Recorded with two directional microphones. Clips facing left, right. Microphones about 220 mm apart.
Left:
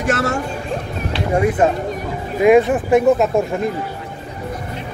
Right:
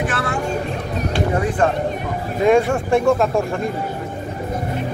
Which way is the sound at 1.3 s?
25° left (ahead or behind).